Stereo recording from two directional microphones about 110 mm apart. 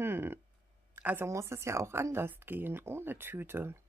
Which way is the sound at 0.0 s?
20° right (ahead or behind).